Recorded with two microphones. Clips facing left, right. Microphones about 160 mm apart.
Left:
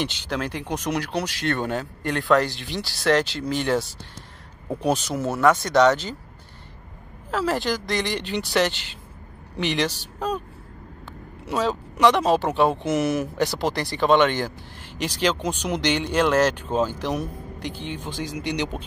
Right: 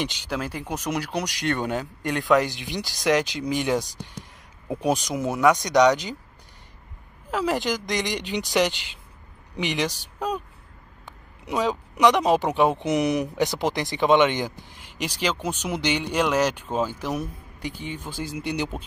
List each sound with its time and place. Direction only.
0.0 s speech: 10° right (ahead or behind)
7.2 s speech: 15° right (ahead or behind)
11.4 s speech: 15° right (ahead or behind)